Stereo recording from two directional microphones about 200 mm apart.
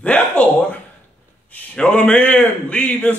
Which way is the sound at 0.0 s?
5° left (ahead or behind).